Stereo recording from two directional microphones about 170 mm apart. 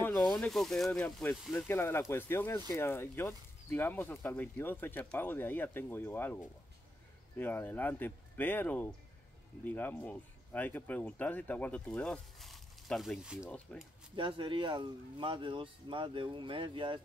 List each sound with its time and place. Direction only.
0.0 s speech: 5° left (ahead or behind)
13.7 s speech: 10° left (ahead or behind)
14.1 s speech: 30° right (ahead or behind)